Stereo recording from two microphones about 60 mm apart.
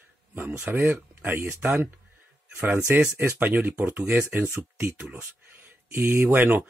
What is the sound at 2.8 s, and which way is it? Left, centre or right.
Speech, right.